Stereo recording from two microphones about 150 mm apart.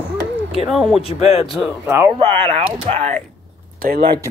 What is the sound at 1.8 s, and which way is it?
Speech, 15° right (ahead or behind).